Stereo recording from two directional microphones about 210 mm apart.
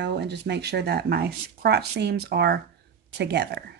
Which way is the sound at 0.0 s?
55° right (ahead or behind).